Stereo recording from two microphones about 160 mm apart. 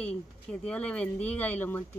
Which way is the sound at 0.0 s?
10° left (ahead or behind).